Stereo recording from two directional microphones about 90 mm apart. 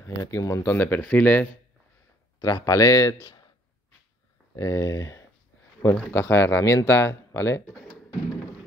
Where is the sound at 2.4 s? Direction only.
40° left (ahead or behind).